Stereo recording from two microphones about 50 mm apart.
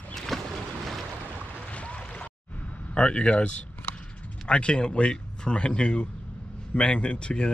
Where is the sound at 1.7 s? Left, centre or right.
Left.